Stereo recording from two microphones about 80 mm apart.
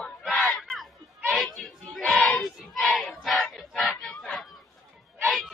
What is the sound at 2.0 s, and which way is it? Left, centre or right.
Child singing, centre.